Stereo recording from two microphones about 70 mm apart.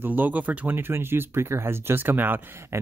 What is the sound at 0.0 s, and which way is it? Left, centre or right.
Speech, right.